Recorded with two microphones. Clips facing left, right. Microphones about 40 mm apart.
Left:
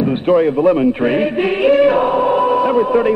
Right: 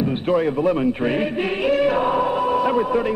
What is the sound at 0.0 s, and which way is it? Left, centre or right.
A man's voice, left.